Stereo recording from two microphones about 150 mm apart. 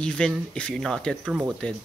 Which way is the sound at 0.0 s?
5° left (ahead or behind).